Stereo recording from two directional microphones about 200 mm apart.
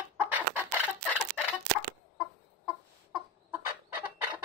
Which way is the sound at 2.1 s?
5° right (ahead or behind).